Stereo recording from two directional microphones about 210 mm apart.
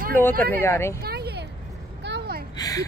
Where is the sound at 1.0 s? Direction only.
50° right (ahead or behind).